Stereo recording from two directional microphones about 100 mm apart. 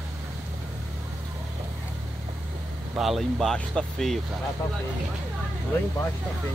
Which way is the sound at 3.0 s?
Centre (ahead or behind).